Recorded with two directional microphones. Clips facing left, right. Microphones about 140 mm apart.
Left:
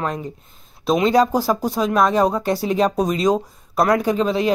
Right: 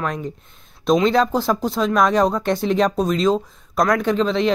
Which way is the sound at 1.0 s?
10° left (ahead or behind).